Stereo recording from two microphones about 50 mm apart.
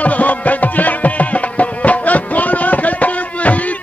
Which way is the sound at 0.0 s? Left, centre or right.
Left.